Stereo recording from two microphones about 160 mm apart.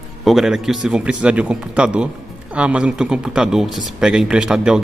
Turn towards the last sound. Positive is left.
turn(degrees=-5)  # may be behind; listen again after turning